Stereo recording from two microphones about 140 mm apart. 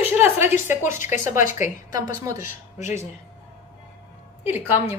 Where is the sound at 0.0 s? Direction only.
15° right (ahead or behind).